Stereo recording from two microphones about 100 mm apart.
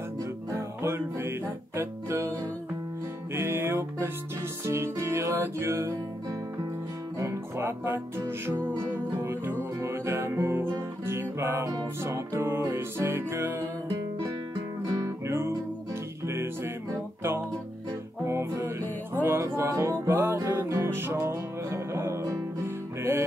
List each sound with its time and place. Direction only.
0.5 s music: 25° right (ahead or behind)
3.3 s music: 25° right (ahead or behind)
7.2 s music: 30° right (ahead or behind)
14.9 s music: 30° right (ahead or behind)
18.2 s music: 25° right (ahead or behind)